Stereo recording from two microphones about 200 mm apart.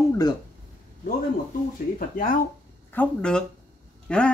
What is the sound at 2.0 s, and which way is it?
Speech, 45° left (ahead or behind).